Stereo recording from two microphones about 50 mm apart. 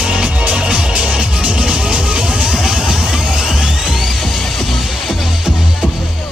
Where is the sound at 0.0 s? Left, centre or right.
Centre.